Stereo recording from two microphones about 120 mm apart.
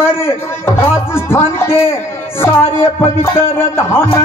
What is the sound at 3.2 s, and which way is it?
Music, 20° left (ahead or behind).